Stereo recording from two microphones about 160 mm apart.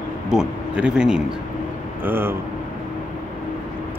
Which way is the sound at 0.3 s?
5° right (ahead or behind).